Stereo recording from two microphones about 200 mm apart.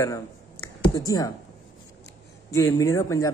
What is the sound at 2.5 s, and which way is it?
Speech, 15° left (ahead or behind).